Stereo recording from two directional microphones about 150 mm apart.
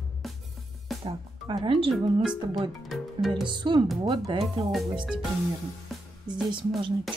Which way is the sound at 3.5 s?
30° right (ahead or behind).